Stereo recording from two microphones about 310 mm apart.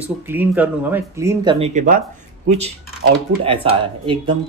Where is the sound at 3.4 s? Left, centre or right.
Centre.